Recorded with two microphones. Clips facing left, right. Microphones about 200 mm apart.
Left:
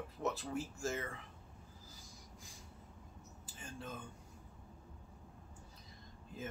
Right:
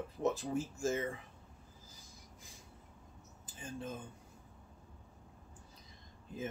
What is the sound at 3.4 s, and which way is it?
Speech, 20° right (ahead or behind).